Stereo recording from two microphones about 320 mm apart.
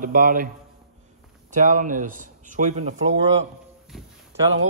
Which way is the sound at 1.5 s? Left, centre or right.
Right.